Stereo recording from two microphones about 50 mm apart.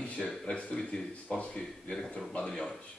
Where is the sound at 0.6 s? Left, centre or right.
Left.